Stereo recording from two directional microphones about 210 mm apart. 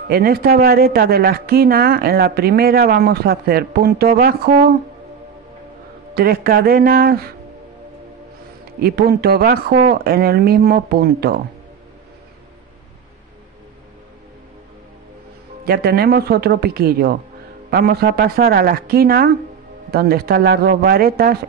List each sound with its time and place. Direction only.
0.1 s speech: 45° right (ahead or behind)
6.1 s speech: 45° right (ahead or behind)
8.7 s speech: 50° right (ahead or behind)
15.6 s speech: 50° right (ahead or behind)